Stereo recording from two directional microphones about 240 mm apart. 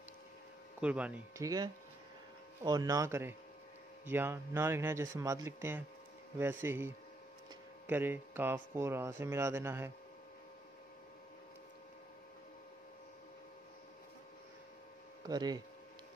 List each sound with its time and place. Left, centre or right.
0.7 s speech: centre
15.2 s speech: centre